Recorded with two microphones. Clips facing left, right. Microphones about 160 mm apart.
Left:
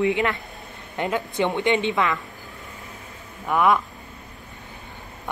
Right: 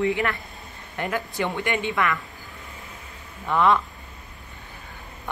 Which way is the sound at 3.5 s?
10° left (ahead or behind).